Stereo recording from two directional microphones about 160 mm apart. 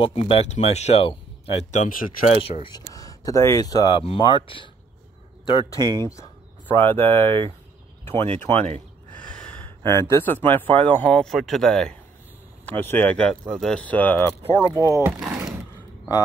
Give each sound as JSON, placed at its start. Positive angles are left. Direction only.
{"t": 0.0, "sound": "speech", "side_deg": 35}
{"t": 2.2, "sound": "speech", "side_deg": 40}
{"t": 2.9, "sound": "speech", "side_deg": 20}
{"t": 5.5, "sound": "speech", "side_deg": 30}
{"t": 5.8, "sound": "speech", "side_deg": -25}
{"t": 6.7, "sound": "speech", "side_deg": 15}
{"t": 8.4, "sound": "speech", "side_deg": 15}
{"t": 8.6, "sound": "gasp", "side_deg": -50}
{"t": 9.8, "sound": "speech", "side_deg": 15}
{"t": 15.1, "sound": "a sound", "side_deg": -5}